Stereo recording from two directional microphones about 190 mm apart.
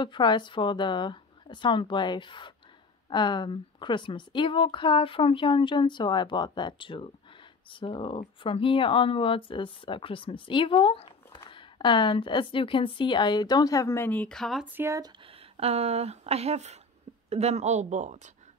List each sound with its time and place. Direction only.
0.0 s speech: 25° left (ahead or behind); by 18.3 s 40° right (ahead or behind)